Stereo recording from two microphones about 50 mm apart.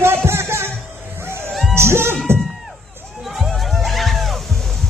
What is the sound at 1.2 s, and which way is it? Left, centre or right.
Music, right.